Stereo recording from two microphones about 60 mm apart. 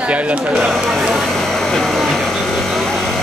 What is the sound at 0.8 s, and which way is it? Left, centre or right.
Vehicle, centre.